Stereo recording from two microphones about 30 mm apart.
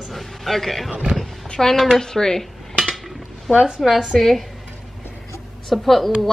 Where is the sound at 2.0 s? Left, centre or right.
Centre.